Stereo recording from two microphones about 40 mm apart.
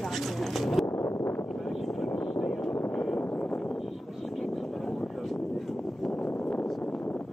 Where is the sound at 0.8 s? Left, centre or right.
Left.